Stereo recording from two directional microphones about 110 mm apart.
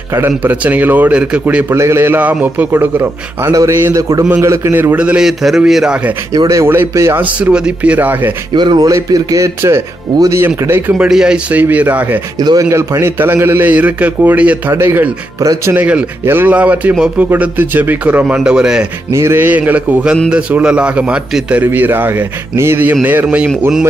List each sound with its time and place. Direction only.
0.1 s a man's voice: 20° right (ahead or behind)
4.9 s a man's voice: 10° right (ahead or behind)
6.3 s a man's voice: 40° right (ahead or behind)
6.6 s a man's voice: 20° right (ahead or behind)
8.5 s speech: 45° right (ahead or behind)
8.8 s a man's voice: 30° right (ahead or behind)
11.0 s a man's voice: 5° right (ahead or behind)
12.4 s a man's voice: 40° right (ahead or behind)
12.6 s a man's voice: 25° right (ahead or behind); by 18.9 s 5° right (ahead or behind)
19.1 s a man's voice: 20° right (ahead or behind)